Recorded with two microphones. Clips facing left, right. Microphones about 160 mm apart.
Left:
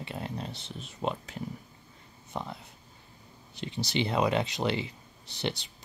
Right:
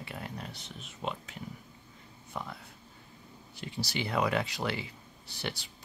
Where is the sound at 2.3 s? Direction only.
20° left (ahead or behind).